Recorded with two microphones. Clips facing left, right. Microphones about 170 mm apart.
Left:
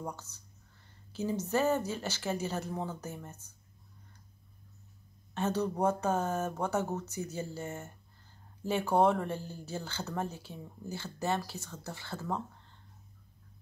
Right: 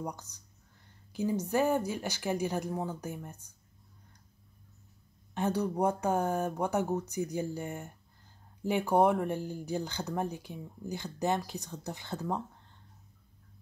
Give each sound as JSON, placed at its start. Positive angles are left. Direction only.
{"t": 0.0, "sound": "speech", "side_deg": -15}
{"t": 5.3, "sound": "speech", "side_deg": -15}